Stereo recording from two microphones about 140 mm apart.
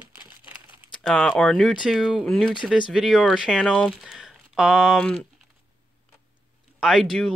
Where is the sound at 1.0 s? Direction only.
5° left (ahead or behind).